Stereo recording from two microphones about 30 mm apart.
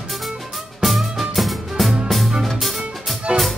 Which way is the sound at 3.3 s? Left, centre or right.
Right.